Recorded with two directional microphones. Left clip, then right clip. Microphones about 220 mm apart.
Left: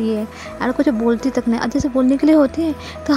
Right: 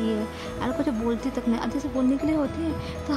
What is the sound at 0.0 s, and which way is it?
A woman's voice, 25° left (ahead or behind).